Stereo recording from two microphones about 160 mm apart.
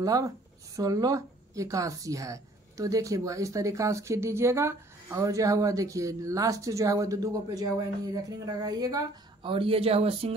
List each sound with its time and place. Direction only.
0.0 s a woman's voice: 20° right (ahead or behind); by 10.3 s 40° right (ahead or behind)